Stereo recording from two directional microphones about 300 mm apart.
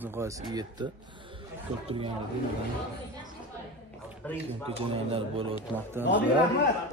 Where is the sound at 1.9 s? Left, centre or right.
Centre.